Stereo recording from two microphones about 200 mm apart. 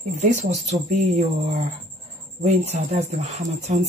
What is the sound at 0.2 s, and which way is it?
Speech, 35° right (ahead or behind).